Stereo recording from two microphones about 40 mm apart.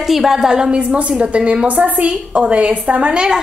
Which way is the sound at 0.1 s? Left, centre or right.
Centre.